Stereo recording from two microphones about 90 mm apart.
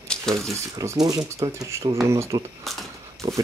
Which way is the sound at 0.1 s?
5° left (ahead or behind).